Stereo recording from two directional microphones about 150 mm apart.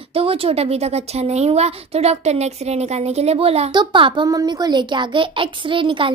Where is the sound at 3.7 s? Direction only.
30° right (ahead or behind).